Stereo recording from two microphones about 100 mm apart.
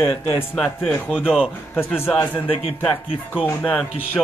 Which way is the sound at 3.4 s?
15° left (ahead or behind).